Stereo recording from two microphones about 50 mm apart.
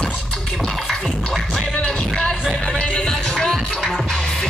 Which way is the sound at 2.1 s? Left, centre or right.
Centre.